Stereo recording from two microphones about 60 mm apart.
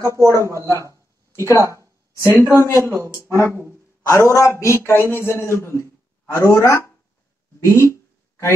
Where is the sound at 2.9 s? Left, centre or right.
Right.